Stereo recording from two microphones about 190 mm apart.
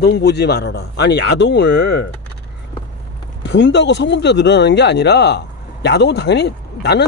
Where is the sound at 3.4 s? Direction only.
70° left (ahead or behind).